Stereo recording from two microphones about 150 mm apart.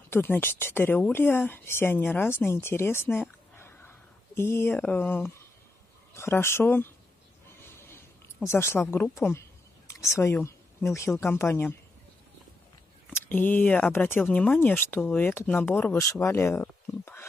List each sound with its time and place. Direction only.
0.1 s speech: 15° left (ahead or behind)
8.5 s speech: 15° left (ahead or behind)
9.8 s a sound: 20° left (ahead or behind)
11.1 s speech: 15° left (ahead or behind)
13.1 s speech: 10° left (ahead or behind)